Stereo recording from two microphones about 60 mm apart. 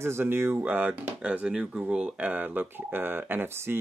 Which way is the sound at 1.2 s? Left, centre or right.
Centre.